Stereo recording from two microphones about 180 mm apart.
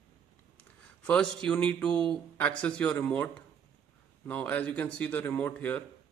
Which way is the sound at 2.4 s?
5° left (ahead or behind).